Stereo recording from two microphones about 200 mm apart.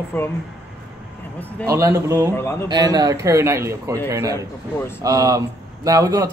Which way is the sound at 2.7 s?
20° right (ahead or behind).